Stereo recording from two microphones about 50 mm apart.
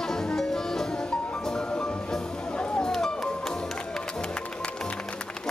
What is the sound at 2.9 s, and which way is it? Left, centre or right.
Music, centre.